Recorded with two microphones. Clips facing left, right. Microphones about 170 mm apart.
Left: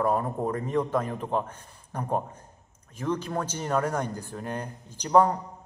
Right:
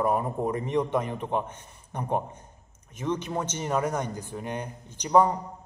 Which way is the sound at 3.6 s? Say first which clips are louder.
Even; 5° right (ahead or behind).